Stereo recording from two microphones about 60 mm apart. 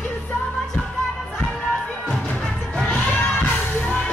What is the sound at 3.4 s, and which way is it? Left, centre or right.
Music, left.